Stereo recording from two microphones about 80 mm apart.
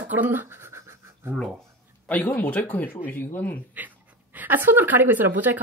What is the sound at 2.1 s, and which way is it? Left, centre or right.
Speech, left.